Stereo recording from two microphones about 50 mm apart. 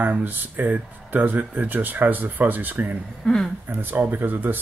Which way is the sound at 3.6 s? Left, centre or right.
Right.